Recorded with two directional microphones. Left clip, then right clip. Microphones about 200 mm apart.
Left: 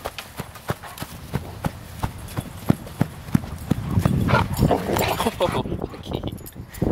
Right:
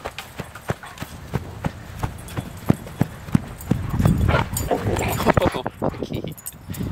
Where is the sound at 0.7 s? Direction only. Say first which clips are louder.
Even; 10° left (ahead or behind).